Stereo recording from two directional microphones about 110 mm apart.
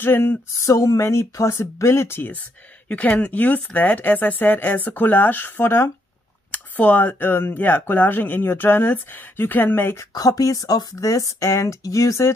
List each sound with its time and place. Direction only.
0.0 s speech: 20° left (ahead or behind)
10.1 s speech: 35° left (ahead or behind)